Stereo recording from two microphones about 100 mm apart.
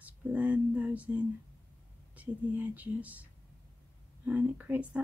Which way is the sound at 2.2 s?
15° right (ahead or behind).